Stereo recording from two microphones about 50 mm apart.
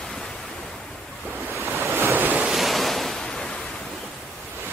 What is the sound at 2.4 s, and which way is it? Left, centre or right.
Waves, centre.